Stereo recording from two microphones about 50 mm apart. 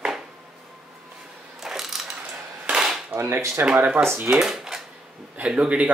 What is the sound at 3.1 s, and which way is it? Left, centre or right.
Speech, right.